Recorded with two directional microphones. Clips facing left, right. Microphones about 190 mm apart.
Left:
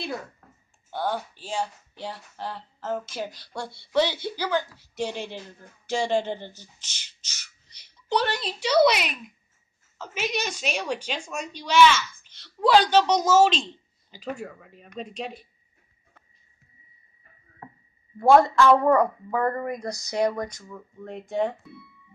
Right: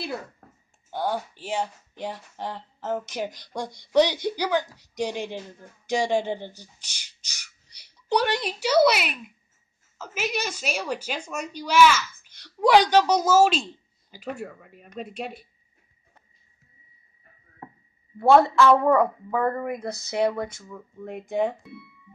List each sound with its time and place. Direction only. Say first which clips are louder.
0.8 s a woman's voice: right 1 dB; 10° right (ahead or behind)
18.9 s a woman's voice: even; 5° right (ahead or behind)